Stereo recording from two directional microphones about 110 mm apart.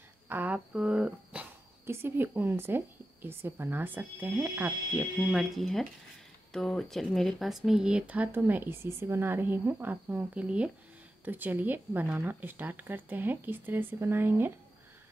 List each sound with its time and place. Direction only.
0.3 s speech: 15° right (ahead or behind)
1.9 s a woman's voice: 20° right (ahead or behind)
5.3 s speech: centre (ahead or behind); by 14.5 s 20° right (ahead or behind)